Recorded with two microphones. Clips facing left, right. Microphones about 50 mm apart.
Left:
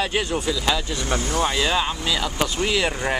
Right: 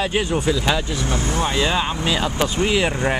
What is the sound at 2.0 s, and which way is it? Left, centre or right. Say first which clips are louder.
Speech: right 3 dB; right.